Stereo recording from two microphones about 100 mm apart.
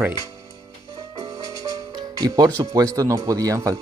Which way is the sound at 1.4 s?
35° right (ahead or behind).